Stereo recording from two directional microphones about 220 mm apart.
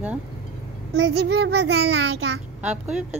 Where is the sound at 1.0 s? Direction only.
50° right (ahead or behind).